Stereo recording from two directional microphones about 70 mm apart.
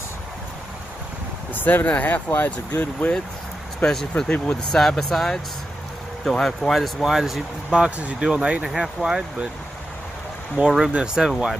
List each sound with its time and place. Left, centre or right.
1.5 s speech: left
3.8 s speech: centre
7.7 s speech: centre
8.6 s speech: centre
10.6 s speech: centre